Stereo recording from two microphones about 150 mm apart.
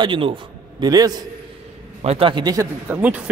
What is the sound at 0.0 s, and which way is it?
A man's voice, 35° right (ahead or behind).